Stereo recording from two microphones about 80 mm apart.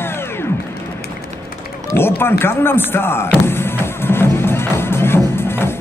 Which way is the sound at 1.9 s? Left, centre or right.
Left.